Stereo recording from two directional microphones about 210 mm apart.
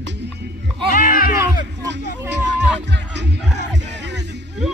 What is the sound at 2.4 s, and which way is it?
Music, 55° right (ahead or behind).